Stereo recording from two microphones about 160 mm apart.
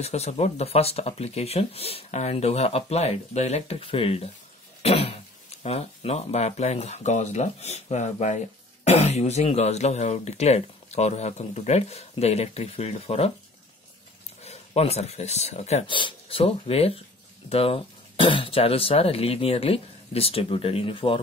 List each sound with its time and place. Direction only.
0.0 s speech: 40° left (ahead or behind)
14.4 s speech: 40° left (ahead or behind)
16.0 s speech: 35° left (ahead or behind)